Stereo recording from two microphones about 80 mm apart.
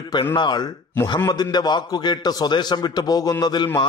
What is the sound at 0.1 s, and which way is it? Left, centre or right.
A man's voice, left.